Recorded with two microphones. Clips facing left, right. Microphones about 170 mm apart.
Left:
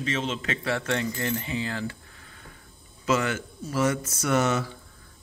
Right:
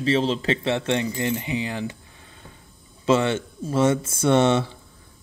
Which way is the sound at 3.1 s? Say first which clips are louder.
Right 5 dB; 25° right (ahead or behind).